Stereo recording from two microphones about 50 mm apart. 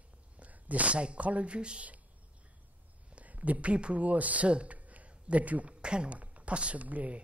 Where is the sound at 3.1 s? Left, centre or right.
Right.